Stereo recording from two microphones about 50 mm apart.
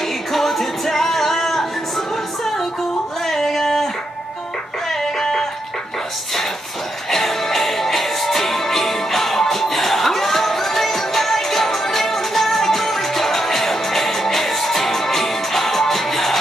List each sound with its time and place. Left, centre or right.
0.0 s music: centre
3.3 s a sound: centre
4.8 s music: centre
7.1 s music: centre